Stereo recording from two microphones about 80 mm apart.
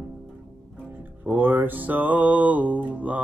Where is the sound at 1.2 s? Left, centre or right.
Right.